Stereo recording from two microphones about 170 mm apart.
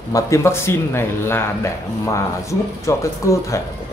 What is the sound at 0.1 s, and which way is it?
A man's voice, 15° left (ahead or behind).